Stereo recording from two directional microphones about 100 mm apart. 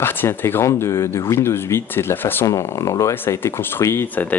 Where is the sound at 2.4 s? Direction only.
35° left (ahead or behind).